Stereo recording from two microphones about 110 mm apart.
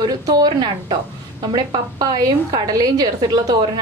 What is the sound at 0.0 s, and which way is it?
Speech, 40° right (ahead or behind).